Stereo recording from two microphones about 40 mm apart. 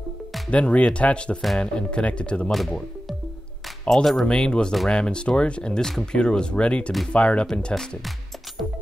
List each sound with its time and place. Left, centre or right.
0.5 s speech: left
2.5 s speech: centre
4.3 s speech: left
5.8 s speech: centre
6.1 s speech: left